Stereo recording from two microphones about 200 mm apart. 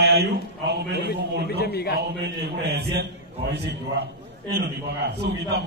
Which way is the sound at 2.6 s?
55° right (ahead or behind).